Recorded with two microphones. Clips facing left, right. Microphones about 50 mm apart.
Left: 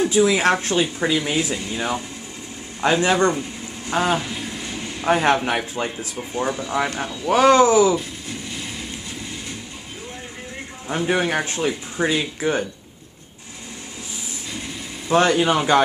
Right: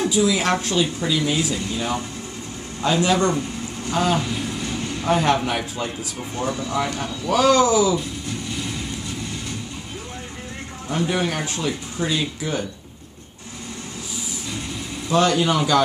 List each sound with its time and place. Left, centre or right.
0.1 s speech: left
2.8 s speech: left
3.3 s speech: centre
4.2 s vehicle: centre
5.0 s speech: left
10.9 s speech: left
15.0 s speech: left